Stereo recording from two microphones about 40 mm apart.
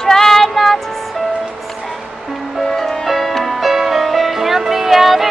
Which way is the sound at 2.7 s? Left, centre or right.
Centre.